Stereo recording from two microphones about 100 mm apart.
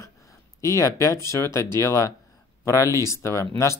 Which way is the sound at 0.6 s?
30° left (ahead or behind).